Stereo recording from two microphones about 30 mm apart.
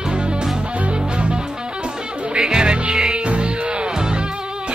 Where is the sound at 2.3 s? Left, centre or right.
Right.